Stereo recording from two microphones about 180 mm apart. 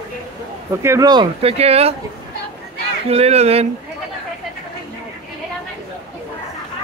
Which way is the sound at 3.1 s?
35° right (ahead or behind).